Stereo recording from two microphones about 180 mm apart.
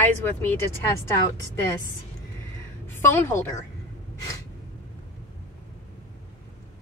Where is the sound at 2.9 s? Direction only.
15° left (ahead or behind).